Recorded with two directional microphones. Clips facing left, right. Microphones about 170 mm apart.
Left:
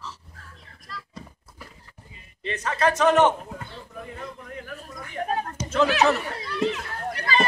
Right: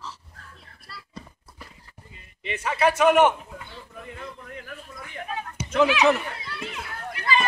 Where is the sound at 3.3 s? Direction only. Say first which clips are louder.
Left 4 dB; 45° left (ahead or behind).